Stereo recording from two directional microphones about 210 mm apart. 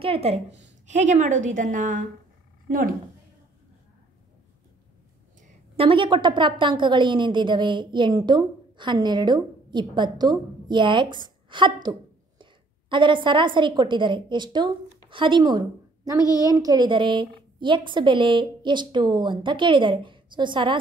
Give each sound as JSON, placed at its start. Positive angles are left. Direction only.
{"t": 0.0, "sound": "a woman's voice", "side_deg": -30}
{"t": 5.8, "sound": "a woman's voice", "side_deg": -25}